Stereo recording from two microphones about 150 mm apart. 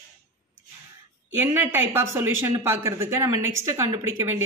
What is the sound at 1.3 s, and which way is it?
Speech, 15° right (ahead or behind).